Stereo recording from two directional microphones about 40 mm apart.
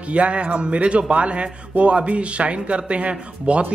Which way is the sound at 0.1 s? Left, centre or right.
Right.